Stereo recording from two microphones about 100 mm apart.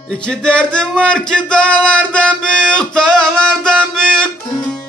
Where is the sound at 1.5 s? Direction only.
10° left (ahead or behind).